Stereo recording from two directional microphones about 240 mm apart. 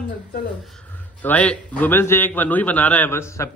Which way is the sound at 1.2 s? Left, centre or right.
Centre.